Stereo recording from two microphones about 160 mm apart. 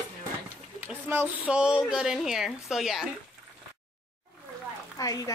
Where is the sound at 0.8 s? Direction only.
10° right (ahead or behind).